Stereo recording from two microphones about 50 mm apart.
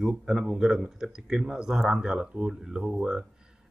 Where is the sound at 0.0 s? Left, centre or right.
Centre.